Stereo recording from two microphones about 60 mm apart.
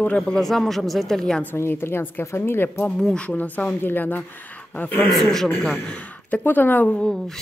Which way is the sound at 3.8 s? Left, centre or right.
Left.